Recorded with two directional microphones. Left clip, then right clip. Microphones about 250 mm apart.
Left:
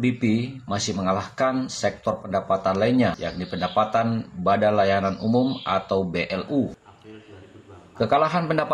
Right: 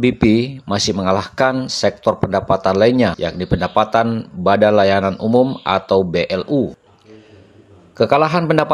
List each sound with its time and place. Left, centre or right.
0.0 s speech: right
8.0 s speech: right